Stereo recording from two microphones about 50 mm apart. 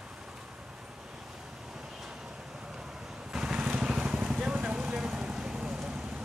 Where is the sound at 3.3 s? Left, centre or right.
Centre.